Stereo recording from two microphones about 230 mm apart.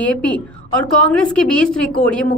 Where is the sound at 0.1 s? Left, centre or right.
Centre.